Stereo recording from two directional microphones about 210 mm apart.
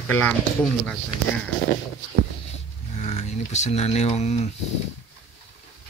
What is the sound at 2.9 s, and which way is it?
Speech, 30° left (ahead or behind).